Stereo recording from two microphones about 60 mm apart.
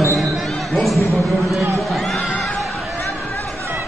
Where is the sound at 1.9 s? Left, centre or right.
Centre.